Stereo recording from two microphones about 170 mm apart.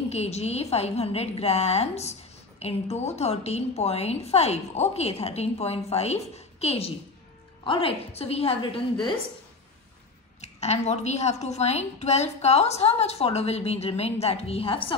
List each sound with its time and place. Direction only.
0.1 s a woman's voice: 40° left (ahead or behind)
10.4 s a woman's voice: 40° left (ahead or behind)